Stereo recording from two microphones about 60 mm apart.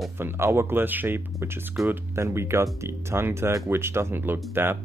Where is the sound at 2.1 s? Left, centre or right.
Right.